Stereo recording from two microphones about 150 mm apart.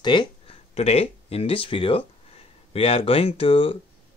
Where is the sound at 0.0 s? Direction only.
30° left (ahead or behind).